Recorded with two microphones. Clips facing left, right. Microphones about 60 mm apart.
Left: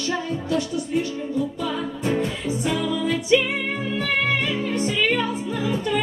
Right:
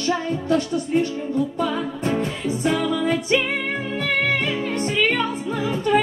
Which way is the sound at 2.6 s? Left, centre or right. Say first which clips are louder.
Right 3 dB; right.